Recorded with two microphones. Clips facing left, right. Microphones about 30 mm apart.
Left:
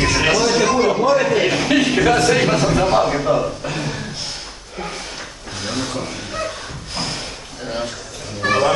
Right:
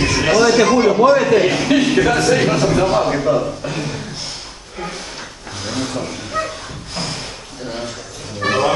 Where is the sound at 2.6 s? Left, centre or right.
Centre.